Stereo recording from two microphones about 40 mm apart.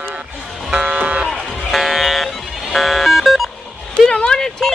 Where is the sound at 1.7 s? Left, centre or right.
Centre.